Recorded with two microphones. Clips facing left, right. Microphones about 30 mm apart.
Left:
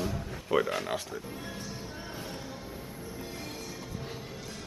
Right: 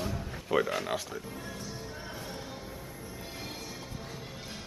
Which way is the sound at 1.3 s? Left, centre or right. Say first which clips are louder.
Left 1 dB; centre.